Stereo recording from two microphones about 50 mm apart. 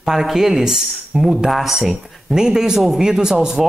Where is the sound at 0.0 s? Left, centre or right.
Centre.